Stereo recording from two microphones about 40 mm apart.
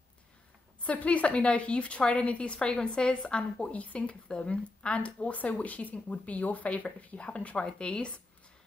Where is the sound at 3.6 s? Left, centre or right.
Left.